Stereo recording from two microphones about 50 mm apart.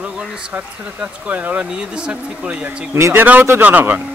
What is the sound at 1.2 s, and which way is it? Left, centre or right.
Speech, right.